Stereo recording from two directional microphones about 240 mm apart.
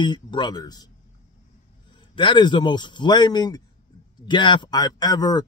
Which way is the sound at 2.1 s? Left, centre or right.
Centre.